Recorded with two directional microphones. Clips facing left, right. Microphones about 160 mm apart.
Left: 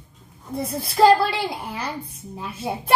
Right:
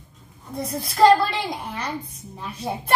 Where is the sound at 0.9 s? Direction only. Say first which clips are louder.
Even; 5° left (ahead or behind).